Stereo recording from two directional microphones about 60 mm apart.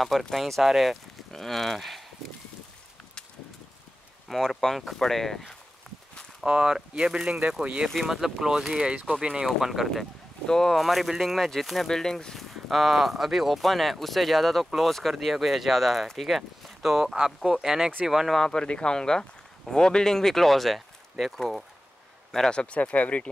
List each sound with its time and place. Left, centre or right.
0.0 s speech: centre
4.3 s speech: centre
6.4 s speech: centre
9.6 s speech: centre
9.8 s speech: centre
12.4 s speech: centre
18.4 s a man's voice: centre
22.3 s speech: centre